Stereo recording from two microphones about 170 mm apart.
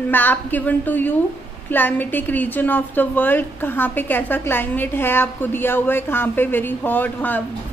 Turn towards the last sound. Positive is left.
turn(degrees=10)  # may be behind; listen again after turning